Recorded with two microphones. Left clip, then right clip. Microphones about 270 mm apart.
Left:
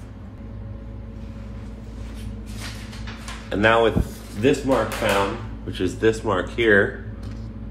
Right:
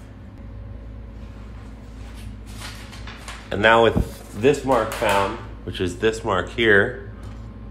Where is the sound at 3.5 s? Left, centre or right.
Right.